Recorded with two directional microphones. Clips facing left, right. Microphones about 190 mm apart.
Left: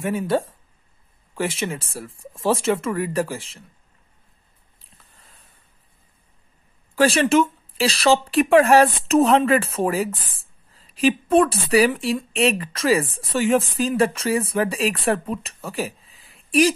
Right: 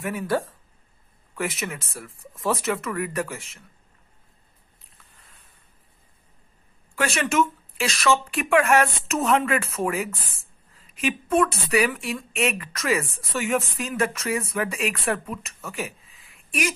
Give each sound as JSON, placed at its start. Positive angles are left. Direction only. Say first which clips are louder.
{"t": 0.0, "sound": "speech", "louder": "left 4 dB", "side_deg": 25}
{"t": 5.0, "sound": "a sound", "louder": "even", "side_deg": 35}
{"t": 7.0, "sound": "speech", "louder": "left 6 dB", "side_deg": 30}